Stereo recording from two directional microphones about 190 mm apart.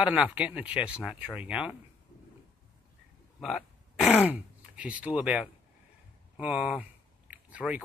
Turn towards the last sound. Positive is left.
turn(degrees=-5)  # may be behind; listen again after turning